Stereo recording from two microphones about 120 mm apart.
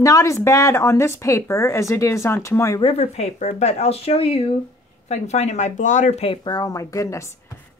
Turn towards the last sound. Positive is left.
turn(degrees=25)  # may be behind; listen again after turning